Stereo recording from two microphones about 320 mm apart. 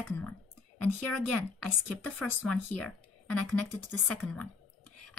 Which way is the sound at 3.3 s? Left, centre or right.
Left.